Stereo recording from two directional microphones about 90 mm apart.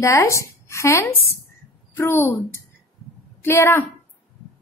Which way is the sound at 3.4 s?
25° left (ahead or behind).